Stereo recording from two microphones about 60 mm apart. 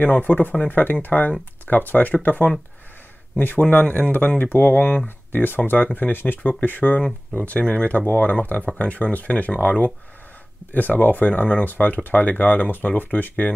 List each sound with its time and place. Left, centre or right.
0.0 s speech: left
3.7 s speech: left
4.4 s speech: left